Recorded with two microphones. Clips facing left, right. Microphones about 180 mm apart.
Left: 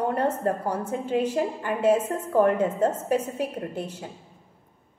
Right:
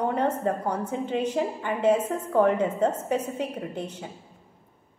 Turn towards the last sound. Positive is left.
turn(degrees=10)  # may be behind; listen again after turning